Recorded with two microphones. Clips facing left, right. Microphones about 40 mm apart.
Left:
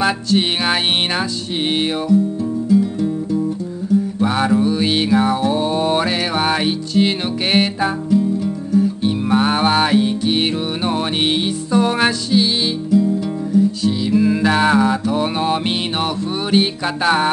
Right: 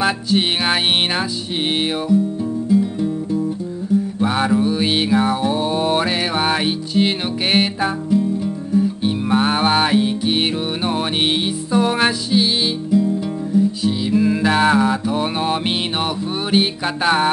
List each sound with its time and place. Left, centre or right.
0.0 s music: centre
2.8 s music: centre
4.2 s music: centre